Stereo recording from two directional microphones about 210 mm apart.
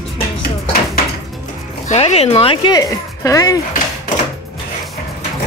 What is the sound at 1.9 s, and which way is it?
Speech, 30° left (ahead or behind).